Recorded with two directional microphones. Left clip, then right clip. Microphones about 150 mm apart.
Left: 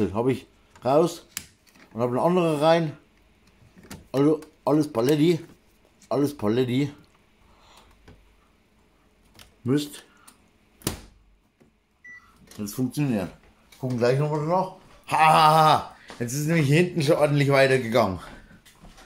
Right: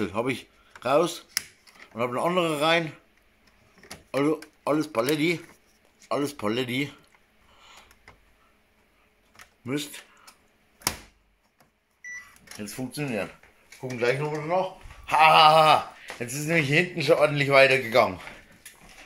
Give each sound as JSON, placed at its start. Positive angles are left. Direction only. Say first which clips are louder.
{"t": 0.0, "sound": "speech", "louder": "left 3 dB", "side_deg": 10}
{"t": 9.7, "sound": "speech", "louder": "left 6 dB", "side_deg": 15}
{"t": 12.7, "sound": "speech", "louder": "left 3 dB", "side_deg": 25}
{"t": 13.7, "sound": "speech", "louder": "left 3 dB", "side_deg": 10}
{"t": 15.0, "sound": "a sound", "louder": "right 1 dB", "side_deg": 35}
{"t": 16.2, "sound": "speech", "louder": "right 1 dB", "side_deg": 15}